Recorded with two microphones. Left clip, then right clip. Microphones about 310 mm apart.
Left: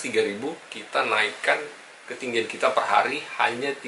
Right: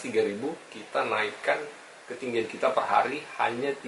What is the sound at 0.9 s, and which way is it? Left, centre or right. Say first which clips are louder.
Speech: left 4 dB; centre.